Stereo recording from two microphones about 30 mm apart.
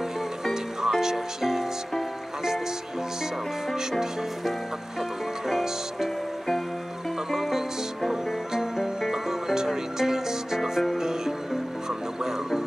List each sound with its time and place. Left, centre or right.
0.8 s music: centre
5.5 s music: centre
7.2 s music: centre
12.2 s music: centre